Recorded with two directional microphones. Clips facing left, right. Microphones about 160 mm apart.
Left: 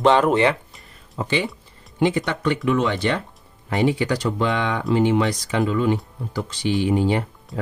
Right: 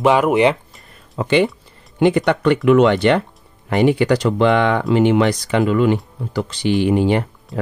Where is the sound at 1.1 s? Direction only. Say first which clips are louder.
Right 8 dB; 65° right (ahead or behind).